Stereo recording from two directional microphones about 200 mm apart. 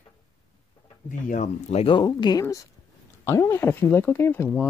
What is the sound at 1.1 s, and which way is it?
Speech, 40° left (ahead or behind).